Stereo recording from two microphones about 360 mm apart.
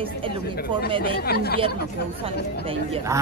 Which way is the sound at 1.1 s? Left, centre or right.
Left.